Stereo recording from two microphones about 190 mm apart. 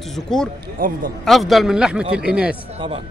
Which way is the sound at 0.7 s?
45° right (ahead or behind).